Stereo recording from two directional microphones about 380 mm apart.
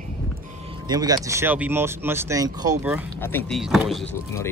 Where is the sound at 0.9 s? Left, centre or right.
Centre.